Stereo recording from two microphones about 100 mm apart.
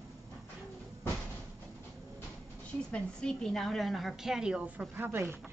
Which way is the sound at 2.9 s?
5° left (ahead or behind).